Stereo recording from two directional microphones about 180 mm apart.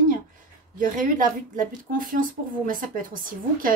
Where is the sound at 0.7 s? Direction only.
45° right (ahead or behind).